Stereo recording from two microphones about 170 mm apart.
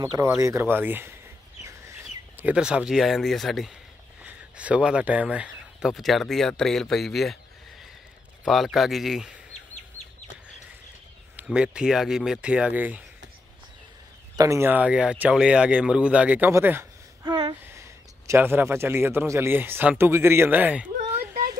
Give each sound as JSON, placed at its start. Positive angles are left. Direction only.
{"t": 0.0, "sound": "speech", "side_deg": -20}
{"t": 8.5, "sound": "speech", "side_deg": 0}
{"t": 11.3, "sound": "speech", "side_deg": -5}
{"t": 14.3, "sound": "speech", "side_deg": -20}
{"t": 17.2, "sound": "a sound", "side_deg": -25}
{"t": 17.6, "sound": "a man's voice", "side_deg": -15}